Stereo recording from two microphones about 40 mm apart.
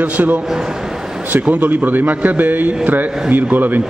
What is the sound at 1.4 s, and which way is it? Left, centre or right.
Speech, right.